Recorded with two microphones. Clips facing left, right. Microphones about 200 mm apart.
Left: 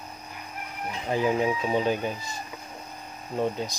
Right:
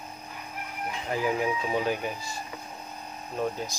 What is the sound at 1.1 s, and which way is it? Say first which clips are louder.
Speech: left 3 dB; 25° left (ahead or behind).